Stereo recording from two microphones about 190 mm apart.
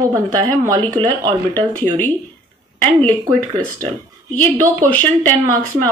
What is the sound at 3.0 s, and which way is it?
A woman's voice, 10° left (ahead or behind).